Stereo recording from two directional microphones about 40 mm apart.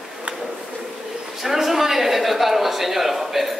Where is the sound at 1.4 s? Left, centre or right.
Centre.